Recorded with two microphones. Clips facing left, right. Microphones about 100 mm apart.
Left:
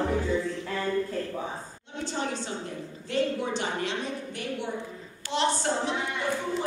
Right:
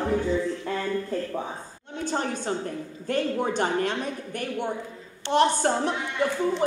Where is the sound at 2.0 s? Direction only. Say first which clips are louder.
Right 3 dB; 50° right (ahead or behind).